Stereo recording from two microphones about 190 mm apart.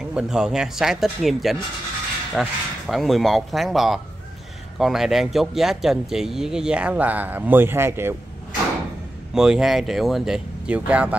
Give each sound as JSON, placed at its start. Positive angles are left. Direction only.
{"t": 0.1, "sound": "speech", "side_deg": -5}
{"t": 9.3, "sound": "speech", "side_deg": -5}